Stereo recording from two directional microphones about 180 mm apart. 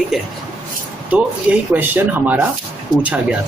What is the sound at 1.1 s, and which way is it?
Speech, 10° right (ahead or behind).